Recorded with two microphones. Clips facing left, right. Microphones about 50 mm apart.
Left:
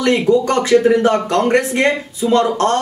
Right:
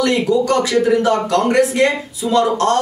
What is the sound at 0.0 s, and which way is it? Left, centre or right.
Speech, left.